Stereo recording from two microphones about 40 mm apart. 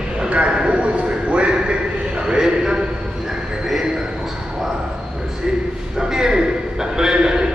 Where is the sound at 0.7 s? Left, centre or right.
Right.